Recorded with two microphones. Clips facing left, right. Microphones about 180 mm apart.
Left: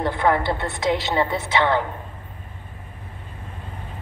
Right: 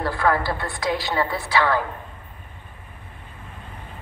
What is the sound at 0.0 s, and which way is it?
A woman's voice, 20° left (ahead or behind).